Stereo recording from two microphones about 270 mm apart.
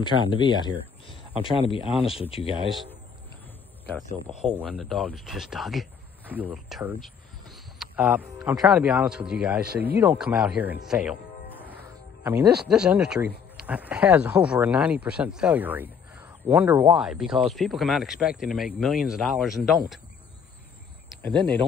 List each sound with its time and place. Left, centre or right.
0.0 s speech: centre
2.7 s speech: centre
4.4 s speech: centre